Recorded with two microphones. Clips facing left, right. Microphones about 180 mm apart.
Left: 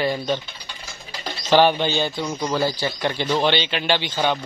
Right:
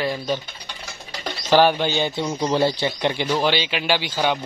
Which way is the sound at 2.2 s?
25° right (ahead or behind).